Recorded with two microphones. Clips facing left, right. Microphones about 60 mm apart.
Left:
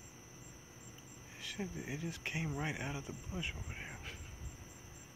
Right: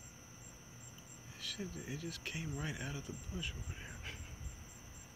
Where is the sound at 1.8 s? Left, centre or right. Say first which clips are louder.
Left 2 dB; centre.